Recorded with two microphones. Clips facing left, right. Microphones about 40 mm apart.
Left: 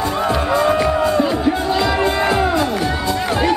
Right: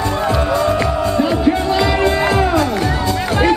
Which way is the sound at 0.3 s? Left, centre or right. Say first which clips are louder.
Even; centre.